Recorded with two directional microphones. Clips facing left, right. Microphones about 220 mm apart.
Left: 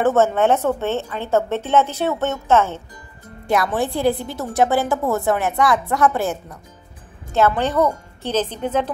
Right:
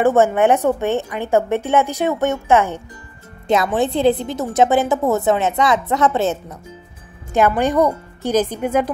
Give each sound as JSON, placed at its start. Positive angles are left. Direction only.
{"t": 0.0, "sound": "a woman's voice", "side_deg": -10}